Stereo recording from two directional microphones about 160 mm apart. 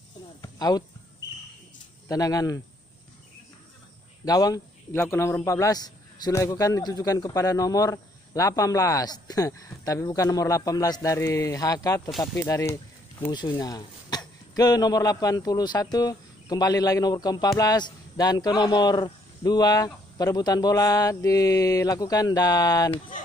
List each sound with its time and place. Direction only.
0.4 s a sound: 25° left (ahead or behind)
2.0 s a man's voice: 20° left (ahead or behind)
4.2 s a man's voice: 25° left (ahead or behind)